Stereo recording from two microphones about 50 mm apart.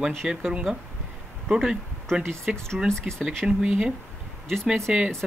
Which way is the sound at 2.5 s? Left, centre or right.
Centre.